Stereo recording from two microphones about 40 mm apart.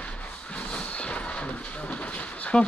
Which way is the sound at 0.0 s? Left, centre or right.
Left.